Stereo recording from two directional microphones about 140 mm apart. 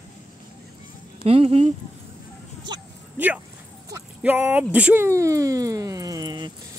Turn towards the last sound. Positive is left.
turn(degrees=-30)  # may be behind; listen again after turning